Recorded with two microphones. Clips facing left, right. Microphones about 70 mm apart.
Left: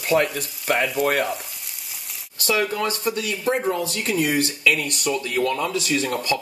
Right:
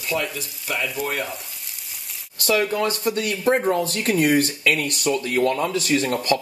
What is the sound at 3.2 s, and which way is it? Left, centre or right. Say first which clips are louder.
Speech: right 5 dB; right.